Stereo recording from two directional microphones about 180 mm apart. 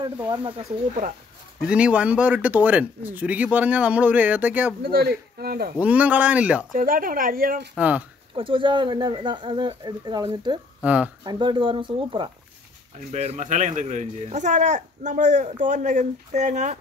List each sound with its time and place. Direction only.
0.3 s speech: 30° right (ahead or behind)
1.7 s speech: 5° right (ahead or behind)
4.8 s a man's voice: 60° right (ahead or behind)
5.8 s speech: 10° right (ahead or behind)
6.7 s speech: 50° right (ahead or behind)
7.7 s speech: 10° right (ahead or behind)
8.4 s speech: 30° right (ahead or behind)
10.8 s speech: 5° right (ahead or behind)
11.2 s speech: 25° right (ahead or behind)
13.1 s speech: 35° right (ahead or behind)